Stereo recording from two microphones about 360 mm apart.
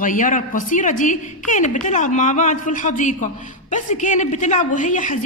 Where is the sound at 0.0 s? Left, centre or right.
Left.